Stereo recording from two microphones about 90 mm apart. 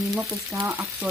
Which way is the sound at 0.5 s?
20° right (ahead or behind).